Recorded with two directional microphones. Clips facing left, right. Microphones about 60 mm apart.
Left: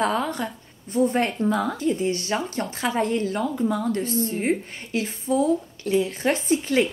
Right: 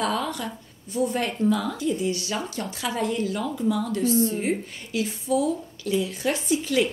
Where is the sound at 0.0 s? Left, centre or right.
Left.